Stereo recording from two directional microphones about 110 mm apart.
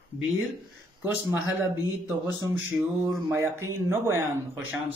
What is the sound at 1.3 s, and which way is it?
Speech, 20° right (ahead or behind).